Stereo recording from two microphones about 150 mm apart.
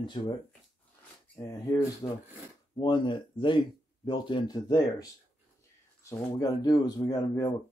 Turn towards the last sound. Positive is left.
turn(degrees=25)  # may be behind; listen again after turning